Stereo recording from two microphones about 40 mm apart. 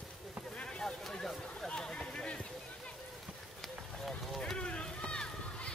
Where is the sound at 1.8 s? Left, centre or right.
Left.